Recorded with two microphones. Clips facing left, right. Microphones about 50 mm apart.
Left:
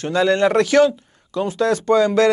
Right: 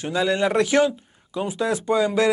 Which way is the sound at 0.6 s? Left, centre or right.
Centre.